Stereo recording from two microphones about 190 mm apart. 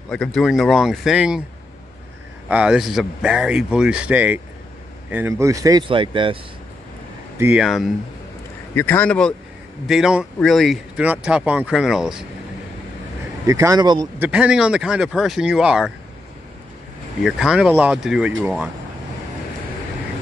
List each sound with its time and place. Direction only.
0.1 s speech: 5° left (ahead or behind)
2.4 s speech: 5° right (ahead or behind); by 6.3 s 25° right (ahead or behind)
7.3 s speech: 10° right (ahead or behind)
8.7 s a man's voice: 10° left (ahead or behind)
13.5 s speech: 15° right (ahead or behind)
14.1 s speech: 10° right (ahead or behind)
17.2 s speech: 5° right (ahead or behind)